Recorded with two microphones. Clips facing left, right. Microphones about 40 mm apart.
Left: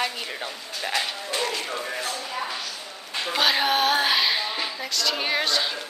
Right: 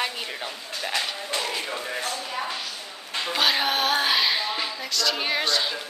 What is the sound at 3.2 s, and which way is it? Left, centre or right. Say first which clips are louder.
A woman's voice: left 1 dB; centre.